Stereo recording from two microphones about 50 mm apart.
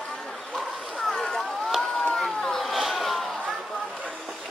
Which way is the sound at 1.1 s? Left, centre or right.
Centre.